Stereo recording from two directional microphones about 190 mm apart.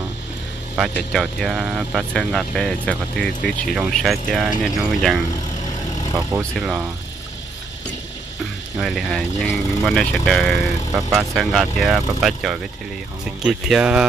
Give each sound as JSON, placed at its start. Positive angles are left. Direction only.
{"t": 0.9, "sound": "speech", "side_deg": 0}
{"t": 8.8, "sound": "speech", "side_deg": 0}